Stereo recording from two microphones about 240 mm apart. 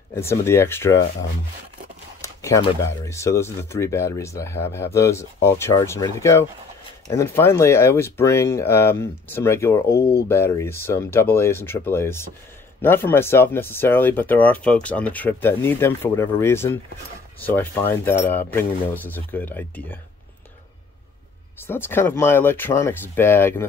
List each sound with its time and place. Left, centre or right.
0.1 s speech: centre
2.2 s a sound: centre
2.8 s speech: centre
9.8 s speech: left
10.2 s speech: centre
21.6 s speech: centre